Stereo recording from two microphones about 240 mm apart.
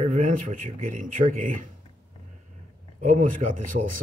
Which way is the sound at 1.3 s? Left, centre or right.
Right.